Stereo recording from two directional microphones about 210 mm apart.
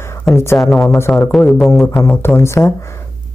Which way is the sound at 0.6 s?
Centre (ahead or behind).